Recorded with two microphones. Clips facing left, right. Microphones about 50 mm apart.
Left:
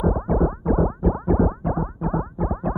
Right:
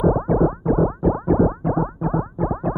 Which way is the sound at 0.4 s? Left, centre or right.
Centre.